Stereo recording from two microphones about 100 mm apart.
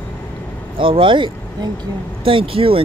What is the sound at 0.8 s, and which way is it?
Speech, 60° right (ahead or behind).